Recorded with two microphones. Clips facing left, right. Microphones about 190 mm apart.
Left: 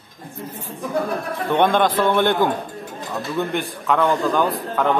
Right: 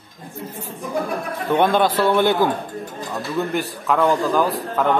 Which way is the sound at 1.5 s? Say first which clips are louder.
Even; 5° right (ahead or behind).